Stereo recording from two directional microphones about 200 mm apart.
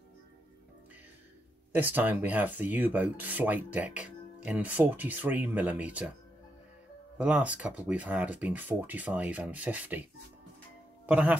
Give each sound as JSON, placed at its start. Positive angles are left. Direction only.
{"t": 1.7, "sound": "speech", "side_deg": -10}
{"t": 7.2, "sound": "speech", "side_deg": -5}
{"t": 11.1, "sound": "speech", "side_deg": -5}